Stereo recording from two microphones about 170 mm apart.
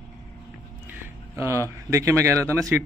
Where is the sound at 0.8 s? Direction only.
15° right (ahead or behind).